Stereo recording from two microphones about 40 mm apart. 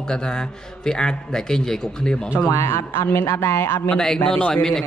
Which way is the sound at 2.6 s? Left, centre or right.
Left.